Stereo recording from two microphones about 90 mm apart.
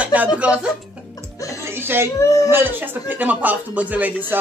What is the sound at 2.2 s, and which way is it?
Speech, 35° left (ahead or behind).